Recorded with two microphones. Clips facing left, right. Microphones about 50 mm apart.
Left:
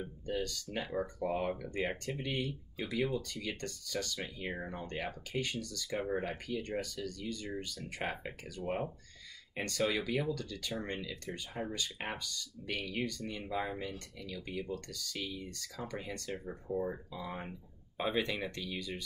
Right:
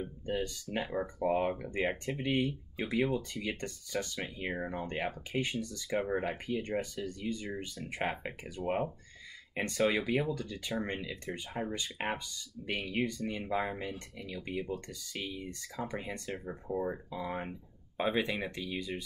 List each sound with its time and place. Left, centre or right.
0.3 s speech: right